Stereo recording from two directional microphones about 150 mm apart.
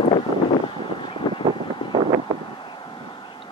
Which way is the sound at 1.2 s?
30° left (ahead or behind).